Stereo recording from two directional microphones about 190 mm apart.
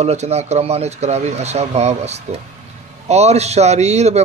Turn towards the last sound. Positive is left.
turn(degrees=-35)  # may be behind; listen again after turning